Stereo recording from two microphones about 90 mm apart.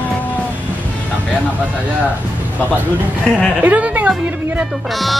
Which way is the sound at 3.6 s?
20° right (ahead or behind).